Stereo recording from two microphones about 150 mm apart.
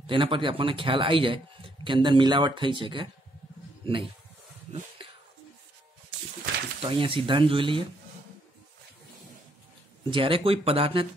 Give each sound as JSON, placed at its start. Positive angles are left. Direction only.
{"t": 0.0, "sound": "a man's voice", "side_deg": -35}
{"t": 6.8, "sound": "a man's voice", "side_deg": -35}
{"t": 10.1, "sound": "a man's voice", "side_deg": -35}